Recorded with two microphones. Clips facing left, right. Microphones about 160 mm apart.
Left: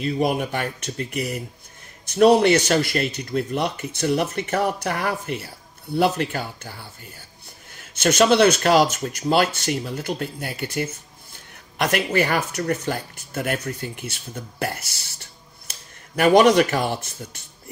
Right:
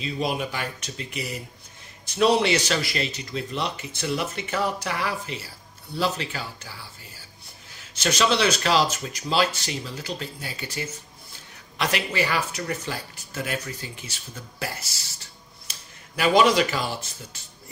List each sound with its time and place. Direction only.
0.0 s speech: 55° left (ahead or behind)
16.2 s speech: 55° left (ahead or behind)